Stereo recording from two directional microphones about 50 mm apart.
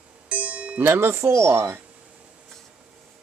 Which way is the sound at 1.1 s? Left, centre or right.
Right.